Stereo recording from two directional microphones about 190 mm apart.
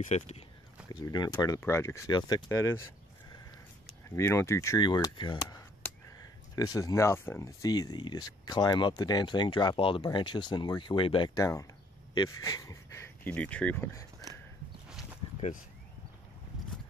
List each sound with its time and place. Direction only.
0.0 s speech: 35° left (ahead or behind)
0.8 s speech: 20° left (ahead or behind)
4.1 s speech: 15° left (ahead or behind)